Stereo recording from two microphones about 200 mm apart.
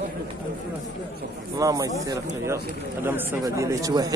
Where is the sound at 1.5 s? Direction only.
15° right (ahead or behind).